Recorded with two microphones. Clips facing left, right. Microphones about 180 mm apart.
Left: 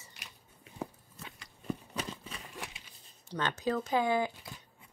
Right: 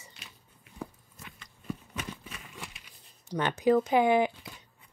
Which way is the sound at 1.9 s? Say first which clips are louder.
Even; 25° left (ahead or behind).